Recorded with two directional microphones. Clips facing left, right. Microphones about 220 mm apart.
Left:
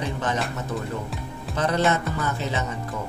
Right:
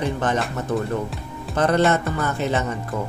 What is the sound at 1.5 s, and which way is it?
Music, 55° right (ahead or behind).